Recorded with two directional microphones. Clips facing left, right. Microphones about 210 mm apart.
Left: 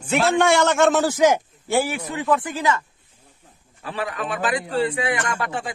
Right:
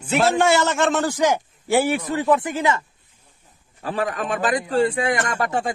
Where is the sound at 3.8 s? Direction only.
45° right (ahead or behind).